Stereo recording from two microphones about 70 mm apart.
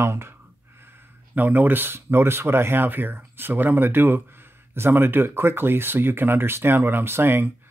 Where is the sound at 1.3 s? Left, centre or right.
Right.